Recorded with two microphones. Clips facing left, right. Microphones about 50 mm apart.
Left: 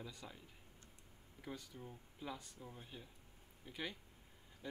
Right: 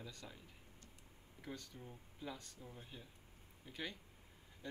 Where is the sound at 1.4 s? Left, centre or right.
Centre.